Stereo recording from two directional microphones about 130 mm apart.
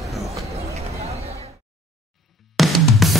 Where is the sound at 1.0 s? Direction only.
50° right (ahead or behind).